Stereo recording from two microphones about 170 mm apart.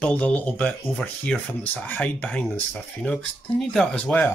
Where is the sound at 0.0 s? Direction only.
5° left (ahead or behind).